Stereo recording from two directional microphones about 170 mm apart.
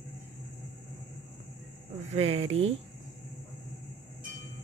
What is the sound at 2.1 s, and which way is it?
Speech, 35° right (ahead or behind).